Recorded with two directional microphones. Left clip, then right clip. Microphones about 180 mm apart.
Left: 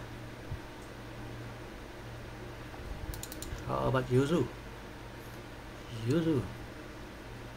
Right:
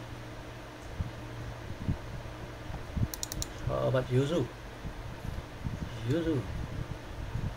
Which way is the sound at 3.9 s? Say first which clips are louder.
Left 1 dB; 15° left (ahead or behind).